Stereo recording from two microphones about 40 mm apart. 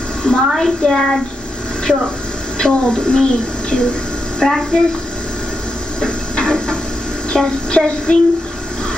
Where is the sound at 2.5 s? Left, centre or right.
Centre.